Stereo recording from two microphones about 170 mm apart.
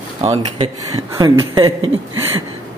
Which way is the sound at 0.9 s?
25° right (ahead or behind).